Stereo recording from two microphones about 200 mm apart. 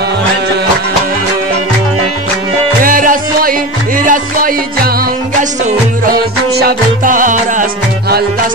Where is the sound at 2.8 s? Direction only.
45° right (ahead or behind).